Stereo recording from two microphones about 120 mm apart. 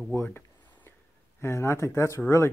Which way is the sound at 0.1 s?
20° left (ahead or behind).